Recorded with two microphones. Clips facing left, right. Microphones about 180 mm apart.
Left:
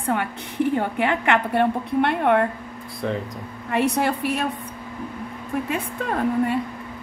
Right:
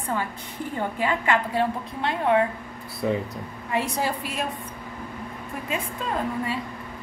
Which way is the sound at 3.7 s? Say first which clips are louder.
Left 5 dB; 65° left (ahead or behind).